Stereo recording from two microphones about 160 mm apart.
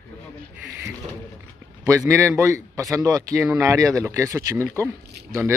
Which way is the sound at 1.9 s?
15° right (ahead or behind).